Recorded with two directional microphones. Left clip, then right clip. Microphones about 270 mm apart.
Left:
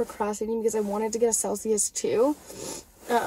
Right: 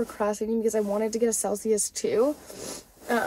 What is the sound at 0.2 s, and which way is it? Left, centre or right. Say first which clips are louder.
Speech: right 3 dB; centre.